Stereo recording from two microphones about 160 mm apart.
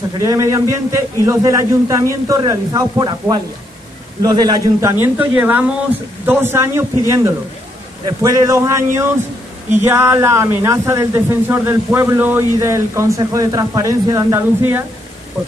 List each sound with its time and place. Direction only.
0.2 s a man's voice: 20° right (ahead or behind)
4.9 s a man's voice: 10° right (ahead or behind)